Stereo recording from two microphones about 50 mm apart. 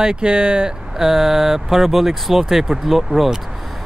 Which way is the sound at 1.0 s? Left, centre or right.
Centre.